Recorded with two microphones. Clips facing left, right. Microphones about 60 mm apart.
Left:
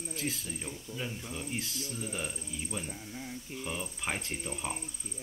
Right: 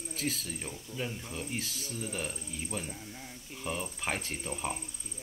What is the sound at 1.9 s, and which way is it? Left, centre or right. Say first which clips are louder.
Speech: even; left.